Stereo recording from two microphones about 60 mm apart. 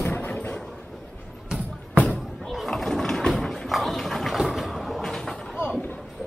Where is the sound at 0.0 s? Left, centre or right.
Left.